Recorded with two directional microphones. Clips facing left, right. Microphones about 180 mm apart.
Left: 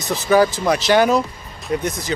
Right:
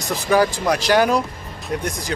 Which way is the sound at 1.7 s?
5° left (ahead or behind).